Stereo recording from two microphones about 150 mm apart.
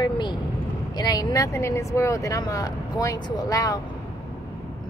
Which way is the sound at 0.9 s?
25° left (ahead or behind).